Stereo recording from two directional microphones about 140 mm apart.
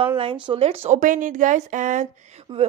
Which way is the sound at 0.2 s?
40° right (ahead or behind).